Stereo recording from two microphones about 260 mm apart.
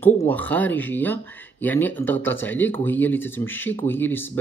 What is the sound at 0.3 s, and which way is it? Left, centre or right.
Speech, centre.